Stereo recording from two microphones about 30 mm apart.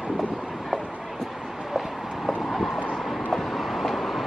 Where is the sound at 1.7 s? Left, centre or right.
Centre.